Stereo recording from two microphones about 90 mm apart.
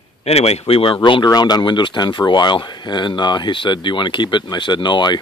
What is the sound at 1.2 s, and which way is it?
Speech, 50° left (ahead or behind).